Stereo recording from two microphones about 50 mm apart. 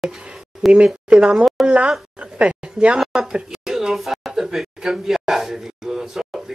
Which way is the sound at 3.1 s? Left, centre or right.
Centre.